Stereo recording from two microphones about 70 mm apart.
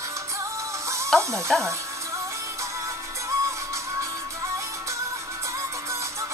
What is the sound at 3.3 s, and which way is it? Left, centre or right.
Music, right.